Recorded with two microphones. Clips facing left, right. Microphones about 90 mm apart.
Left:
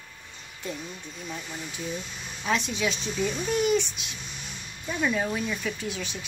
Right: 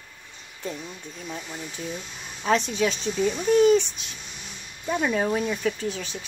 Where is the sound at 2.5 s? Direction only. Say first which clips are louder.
Right 4 dB; 40° right (ahead or behind).